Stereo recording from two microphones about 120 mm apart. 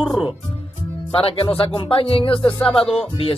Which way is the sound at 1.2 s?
50° left (ahead or behind).